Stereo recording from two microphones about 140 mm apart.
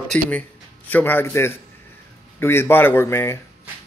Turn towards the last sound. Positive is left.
turn(degrees=15)  # may be behind; listen again after turning